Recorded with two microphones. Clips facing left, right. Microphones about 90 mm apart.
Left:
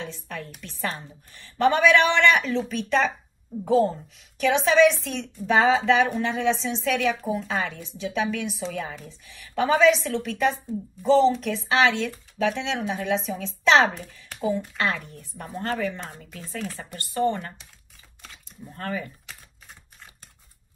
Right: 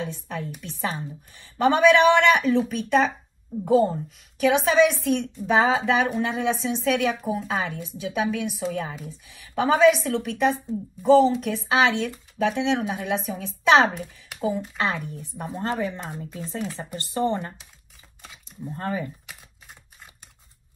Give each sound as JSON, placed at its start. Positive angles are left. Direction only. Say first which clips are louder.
{"t": 0.0, "sound": "a woman's voice", "louder": "right 4 dB", "side_deg": -15}
{"t": 18.6, "sound": "speech", "louder": "right 3 dB", "side_deg": -25}
{"t": 19.2, "sound": "typing", "louder": "right 1 dB", "side_deg": -10}